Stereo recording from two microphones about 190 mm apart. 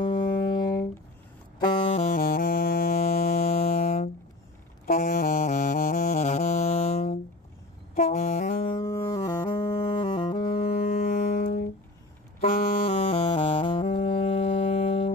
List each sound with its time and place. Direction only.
0.0 s music: 20° left (ahead or behind)
2.0 s music: 45° left (ahead or behind)
3.4 s music: 35° left (ahead or behind)
4.8 s music: 50° left (ahead or behind)
7.9 s saxophone: 40° left (ahead or behind)
8.9 s music: 20° left (ahead or behind)
10.8 s music: 50° left (ahead or behind)
12.8 s music: 30° left (ahead or behind)